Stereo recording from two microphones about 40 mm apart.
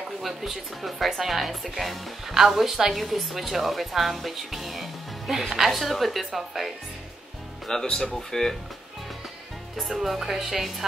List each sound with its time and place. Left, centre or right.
0.2 s speech: centre
7.6 s speech: centre
7.9 s speech: left
8.2 s speech: centre
9.8 s a woman's voice: centre